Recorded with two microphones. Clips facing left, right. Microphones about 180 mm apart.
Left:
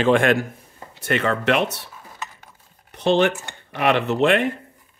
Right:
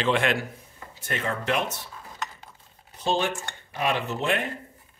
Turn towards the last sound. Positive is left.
turn(degrees=70)  # may be behind; listen again after turning